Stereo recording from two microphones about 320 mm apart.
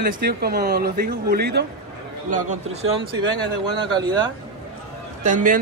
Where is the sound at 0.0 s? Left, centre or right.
Right.